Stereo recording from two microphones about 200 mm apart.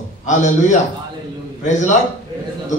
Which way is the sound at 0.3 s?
40° left (ahead or behind).